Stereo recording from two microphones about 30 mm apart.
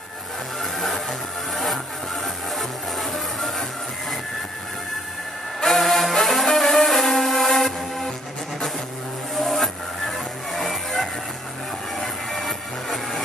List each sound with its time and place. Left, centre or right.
0.6 s music: centre
5.7 s music: centre
9.3 s music: centre